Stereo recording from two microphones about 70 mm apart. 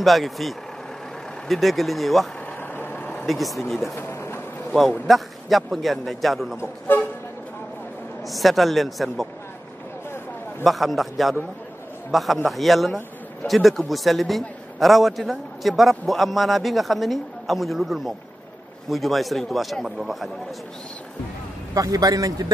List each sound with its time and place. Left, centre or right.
0.0 s a man's voice: centre
2.7 s vehicle: left
3.3 s a man's voice: centre
3.9 s a sound: left
5.0 s a man's voice: centre
6.6 s toot: left
8.3 s a man's voice: centre
10.6 s a man's voice: centre
21.7 s a man's voice: right